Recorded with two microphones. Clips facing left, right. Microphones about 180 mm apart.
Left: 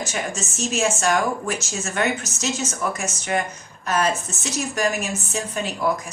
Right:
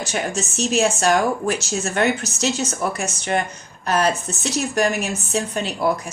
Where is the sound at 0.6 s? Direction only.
35° right (ahead or behind).